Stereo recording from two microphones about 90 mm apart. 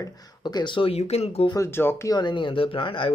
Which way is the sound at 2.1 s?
55° left (ahead or behind).